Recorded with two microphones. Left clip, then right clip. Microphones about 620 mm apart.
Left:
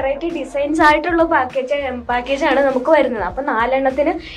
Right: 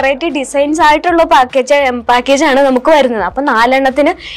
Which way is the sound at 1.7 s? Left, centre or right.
Right.